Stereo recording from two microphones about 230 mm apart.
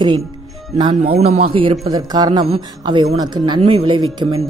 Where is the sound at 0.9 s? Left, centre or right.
Right.